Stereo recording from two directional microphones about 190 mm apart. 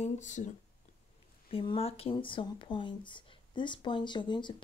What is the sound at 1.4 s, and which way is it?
Speech, 30° left (ahead or behind).